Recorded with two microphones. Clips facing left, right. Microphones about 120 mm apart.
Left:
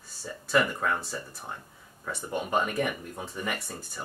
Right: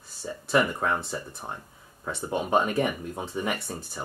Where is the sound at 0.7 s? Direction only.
25° right (ahead or behind).